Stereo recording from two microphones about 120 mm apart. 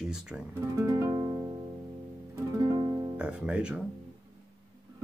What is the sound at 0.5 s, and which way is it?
Music, 25° right (ahead or behind).